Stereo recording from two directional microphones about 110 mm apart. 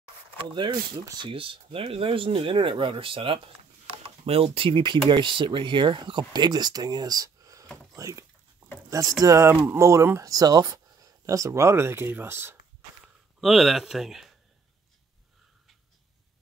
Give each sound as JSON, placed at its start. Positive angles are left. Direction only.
{"t": 0.4, "sound": "speech", "side_deg": -50}
{"t": 13.0, "sound": "speech", "side_deg": 0}